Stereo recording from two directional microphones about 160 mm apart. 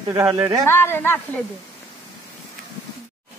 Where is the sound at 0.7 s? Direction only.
15° left (ahead or behind).